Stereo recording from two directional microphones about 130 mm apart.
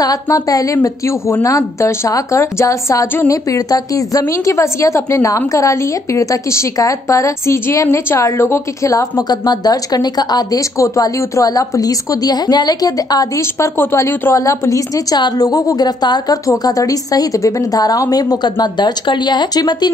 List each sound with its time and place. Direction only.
0.0 s a woman's voice: 30° left (ahead or behind)